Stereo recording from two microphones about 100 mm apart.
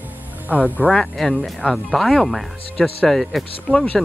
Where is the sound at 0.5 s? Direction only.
15° right (ahead or behind).